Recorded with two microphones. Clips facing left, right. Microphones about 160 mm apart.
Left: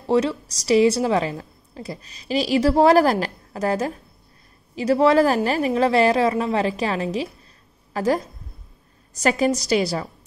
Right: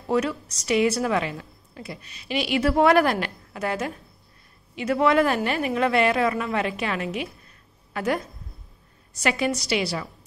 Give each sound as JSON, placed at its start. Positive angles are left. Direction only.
{"t": 0.0, "sound": "a woman's voice", "side_deg": 30}